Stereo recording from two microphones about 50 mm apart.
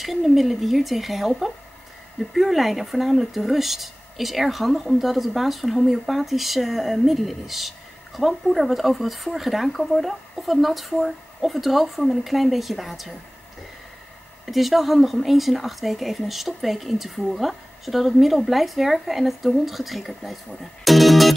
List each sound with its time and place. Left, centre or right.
0.0 s speech: centre
14.4 s speech: centre
20.8 s music: centre